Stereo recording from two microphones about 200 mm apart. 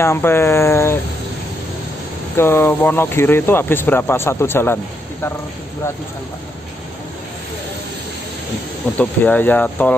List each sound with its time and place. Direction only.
0.0 s speech: 10° left (ahead or behind)
2.3 s speech: 10° left (ahead or behind)
8.9 s speech: 10° left (ahead or behind)